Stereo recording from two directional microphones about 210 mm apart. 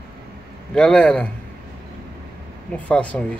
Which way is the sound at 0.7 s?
5° left (ahead or behind).